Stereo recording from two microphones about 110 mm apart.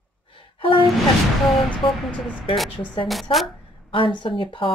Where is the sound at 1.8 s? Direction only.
50° left (ahead or behind).